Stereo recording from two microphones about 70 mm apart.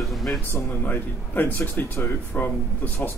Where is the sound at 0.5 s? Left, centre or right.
Left.